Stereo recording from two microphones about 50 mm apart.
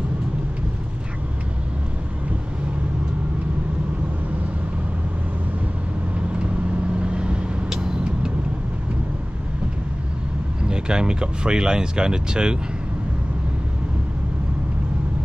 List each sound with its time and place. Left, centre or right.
7.0 s vehicle: right
10.7 s speech: centre